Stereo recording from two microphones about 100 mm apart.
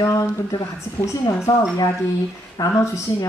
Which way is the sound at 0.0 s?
30° left (ahead or behind).